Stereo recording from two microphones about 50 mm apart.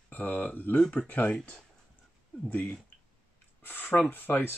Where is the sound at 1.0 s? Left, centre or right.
Left.